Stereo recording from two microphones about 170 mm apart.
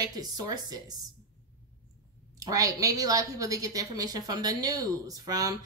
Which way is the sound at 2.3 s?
20° right (ahead or behind).